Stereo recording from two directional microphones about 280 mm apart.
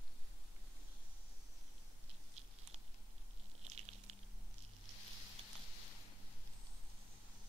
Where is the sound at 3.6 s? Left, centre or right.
Right.